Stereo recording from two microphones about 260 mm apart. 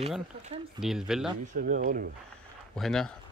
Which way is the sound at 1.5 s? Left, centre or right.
Right.